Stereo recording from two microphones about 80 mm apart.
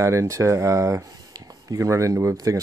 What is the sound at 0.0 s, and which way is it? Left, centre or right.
Speech, right.